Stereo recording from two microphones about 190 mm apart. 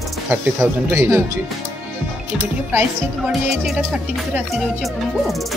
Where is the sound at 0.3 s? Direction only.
15° right (ahead or behind).